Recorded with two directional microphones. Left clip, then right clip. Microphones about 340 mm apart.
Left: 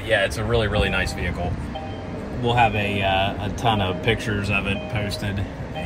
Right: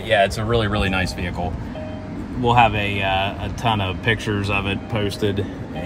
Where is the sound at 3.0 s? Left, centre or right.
Right.